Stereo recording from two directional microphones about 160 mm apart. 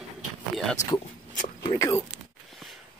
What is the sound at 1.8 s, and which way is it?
Speech, 20° left (ahead or behind).